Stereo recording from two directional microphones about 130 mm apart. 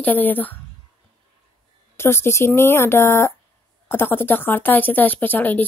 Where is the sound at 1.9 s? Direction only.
20° left (ahead or behind).